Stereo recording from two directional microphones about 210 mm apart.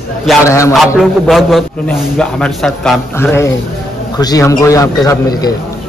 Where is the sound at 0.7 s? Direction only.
Centre (ahead or behind); by 5.5 s 15° left (ahead or behind).